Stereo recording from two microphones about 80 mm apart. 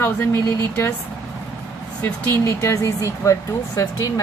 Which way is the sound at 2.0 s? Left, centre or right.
Left.